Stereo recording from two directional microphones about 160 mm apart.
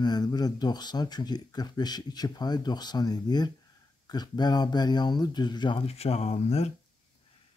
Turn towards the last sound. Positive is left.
turn(degrees=40)  # may be behind; listen again after turning